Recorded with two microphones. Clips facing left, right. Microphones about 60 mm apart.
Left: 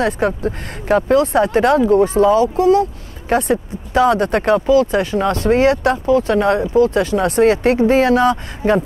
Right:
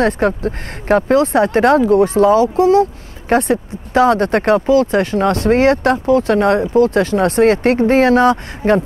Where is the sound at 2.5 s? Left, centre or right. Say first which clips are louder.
Right 2 dB; right.